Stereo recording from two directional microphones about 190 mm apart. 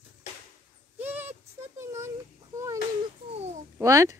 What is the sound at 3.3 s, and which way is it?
Babbling, 35° right (ahead or behind).